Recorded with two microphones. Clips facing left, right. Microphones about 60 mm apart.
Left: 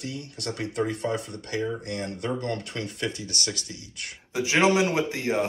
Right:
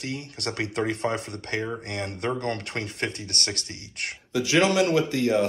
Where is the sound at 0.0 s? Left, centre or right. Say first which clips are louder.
Right 2 dB; right.